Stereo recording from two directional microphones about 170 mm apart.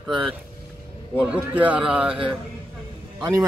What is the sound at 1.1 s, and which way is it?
Speech, 5° right (ahead or behind).